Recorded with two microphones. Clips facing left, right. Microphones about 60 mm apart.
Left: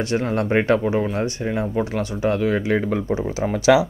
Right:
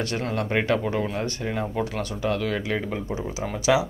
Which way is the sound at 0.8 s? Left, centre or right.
Centre.